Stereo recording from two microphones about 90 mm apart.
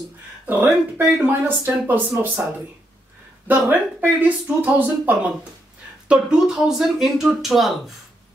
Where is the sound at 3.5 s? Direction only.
15° right (ahead or behind).